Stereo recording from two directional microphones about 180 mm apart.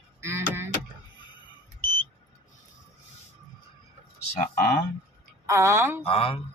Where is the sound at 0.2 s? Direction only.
15° right (ahead or behind).